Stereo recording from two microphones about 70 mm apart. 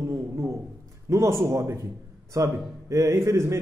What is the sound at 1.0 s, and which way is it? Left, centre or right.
A man's voice, right.